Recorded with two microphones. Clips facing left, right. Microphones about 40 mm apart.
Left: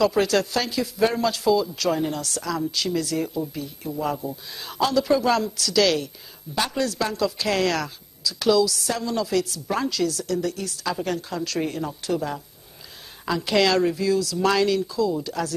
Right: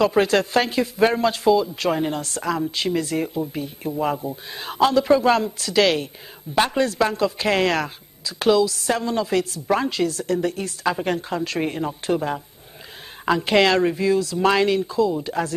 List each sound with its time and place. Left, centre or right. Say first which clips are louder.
0.0 s a man's voice: right 2 dB; right